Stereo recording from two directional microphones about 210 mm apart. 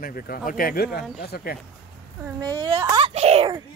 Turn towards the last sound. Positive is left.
turn(degrees=-30)  # may be behind; listen again after turning